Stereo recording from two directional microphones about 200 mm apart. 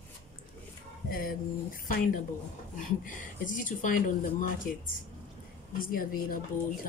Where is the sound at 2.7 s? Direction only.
40° left (ahead or behind).